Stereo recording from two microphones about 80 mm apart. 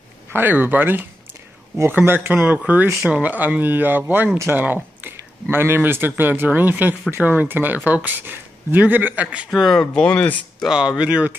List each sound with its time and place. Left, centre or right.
0.3 s speech: right
2.9 s speech: centre
3.2 s speech: centre
9.5 s speech: centre
10.7 s speech: centre